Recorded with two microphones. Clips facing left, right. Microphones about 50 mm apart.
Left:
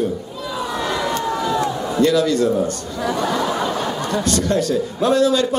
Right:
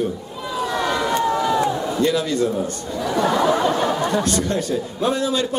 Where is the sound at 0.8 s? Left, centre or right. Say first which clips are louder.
Right 2 dB; centre.